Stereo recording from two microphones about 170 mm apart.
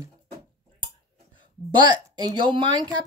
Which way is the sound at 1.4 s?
25° right (ahead or behind).